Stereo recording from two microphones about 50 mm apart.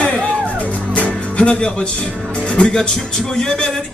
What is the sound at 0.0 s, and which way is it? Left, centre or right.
Music, centre.